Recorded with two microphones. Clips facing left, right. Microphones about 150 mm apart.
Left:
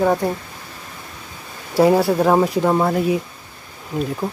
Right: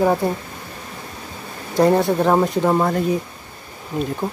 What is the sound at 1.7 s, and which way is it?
Speech, 5° left (ahead or behind).